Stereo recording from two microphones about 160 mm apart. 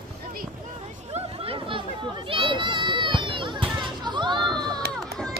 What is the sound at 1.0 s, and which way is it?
Children playing, 40° right (ahead or behind).